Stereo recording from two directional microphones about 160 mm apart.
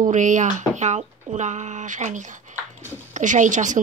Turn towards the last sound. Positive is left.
turn(degrees=-50)  # may be behind; listen again after turning